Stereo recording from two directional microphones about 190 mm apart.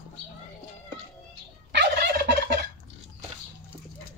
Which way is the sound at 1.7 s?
60° right (ahead or behind).